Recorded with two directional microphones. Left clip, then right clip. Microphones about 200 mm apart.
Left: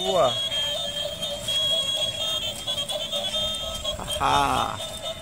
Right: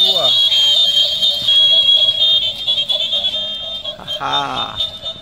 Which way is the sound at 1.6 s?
Centre (ahead or behind).